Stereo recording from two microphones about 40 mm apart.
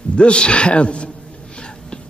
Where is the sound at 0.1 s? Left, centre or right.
Left.